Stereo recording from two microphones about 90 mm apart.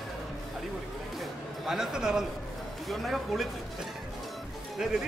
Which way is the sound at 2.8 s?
Centre (ahead or behind).